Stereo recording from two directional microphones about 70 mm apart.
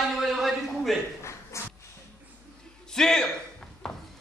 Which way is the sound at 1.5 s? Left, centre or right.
Left.